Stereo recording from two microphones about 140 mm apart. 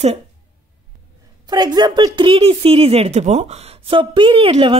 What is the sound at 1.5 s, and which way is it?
Speech, 30° right (ahead or behind).